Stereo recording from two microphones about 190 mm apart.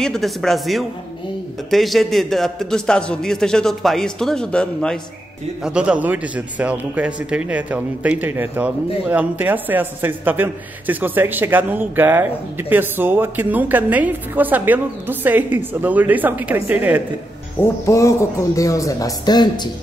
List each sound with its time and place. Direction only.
0.0 s a man's voice: centre (ahead or behind)
17.6 s speech: 15° left (ahead or behind)